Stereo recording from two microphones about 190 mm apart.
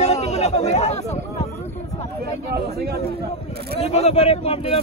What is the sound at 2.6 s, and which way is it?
Speech, 55° right (ahead or behind).